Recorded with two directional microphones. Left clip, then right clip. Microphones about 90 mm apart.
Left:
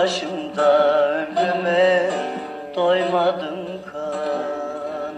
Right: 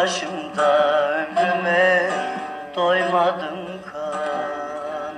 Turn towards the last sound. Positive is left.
turn(degrees=40)  # may be behind; listen again after turning